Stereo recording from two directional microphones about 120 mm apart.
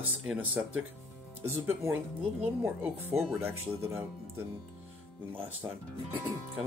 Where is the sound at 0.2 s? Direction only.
10° right (ahead or behind).